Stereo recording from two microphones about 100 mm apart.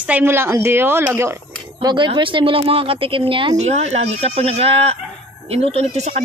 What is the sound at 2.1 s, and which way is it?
A woman's voice, 55° right (ahead or behind).